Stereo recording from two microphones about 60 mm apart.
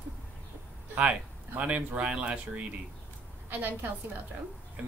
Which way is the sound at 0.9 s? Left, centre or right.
Right.